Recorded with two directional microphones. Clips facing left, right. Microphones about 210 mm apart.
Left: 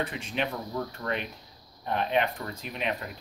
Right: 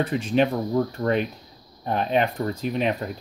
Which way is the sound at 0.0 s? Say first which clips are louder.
Right 10 dB; 35° right (ahead or behind).